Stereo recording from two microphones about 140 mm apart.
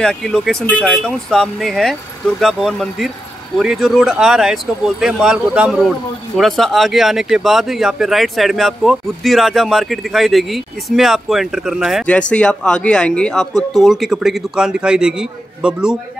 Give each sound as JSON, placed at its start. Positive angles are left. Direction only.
{"t": 0.0, "sound": "speech", "side_deg": 5}
{"t": 12.1, "sound": "speech", "side_deg": 10}